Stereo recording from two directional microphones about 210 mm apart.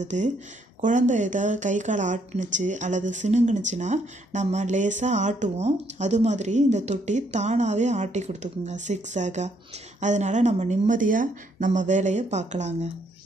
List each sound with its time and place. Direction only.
0.0 s speech: 35° right (ahead or behind)